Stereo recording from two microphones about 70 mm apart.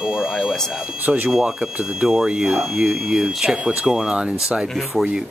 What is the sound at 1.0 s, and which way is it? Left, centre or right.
Speech, right.